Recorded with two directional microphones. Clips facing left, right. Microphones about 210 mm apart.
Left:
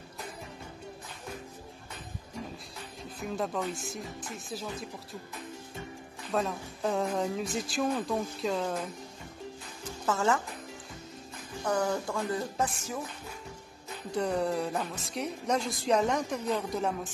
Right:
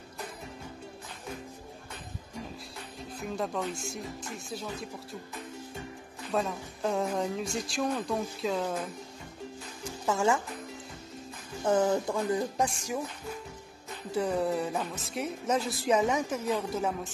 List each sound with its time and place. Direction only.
3.0 s speech: centre (ahead or behind)
6.3 s speech: centre (ahead or behind)
10.0 s speech: 15° right (ahead or behind)
11.6 s speech: 20° right (ahead or behind)
14.1 s speech: centre (ahead or behind)